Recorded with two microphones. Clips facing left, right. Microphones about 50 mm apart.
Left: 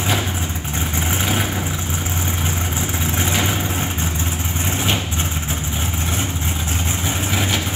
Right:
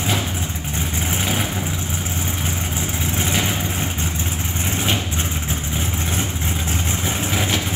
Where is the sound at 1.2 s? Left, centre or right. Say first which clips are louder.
Left 1 dB; centre.